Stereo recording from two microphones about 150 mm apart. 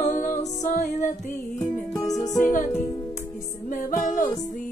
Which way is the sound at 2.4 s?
55° left (ahead or behind).